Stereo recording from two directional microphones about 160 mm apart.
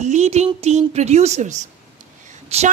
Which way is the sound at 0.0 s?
45° right (ahead or behind).